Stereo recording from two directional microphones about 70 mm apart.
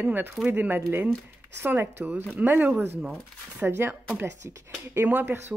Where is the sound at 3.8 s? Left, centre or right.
Right.